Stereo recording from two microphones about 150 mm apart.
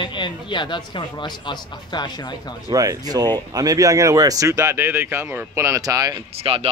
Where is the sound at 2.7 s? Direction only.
25° right (ahead or behind).